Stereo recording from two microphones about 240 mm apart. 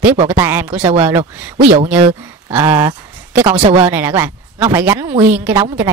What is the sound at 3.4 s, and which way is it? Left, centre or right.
Speech, right.